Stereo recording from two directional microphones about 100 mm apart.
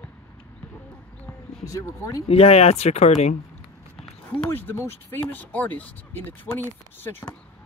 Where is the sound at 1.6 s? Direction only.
35° left (ahead or behind).